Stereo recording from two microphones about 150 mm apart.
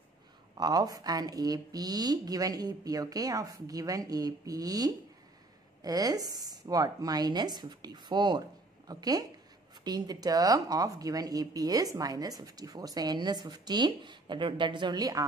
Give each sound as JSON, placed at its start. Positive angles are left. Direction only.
{"t": 0.6, "sound": "speech", "side_deg": -25}